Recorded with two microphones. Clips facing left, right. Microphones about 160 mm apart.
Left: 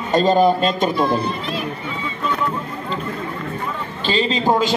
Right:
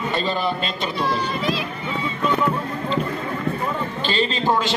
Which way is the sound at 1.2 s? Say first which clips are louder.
Even; 90° right.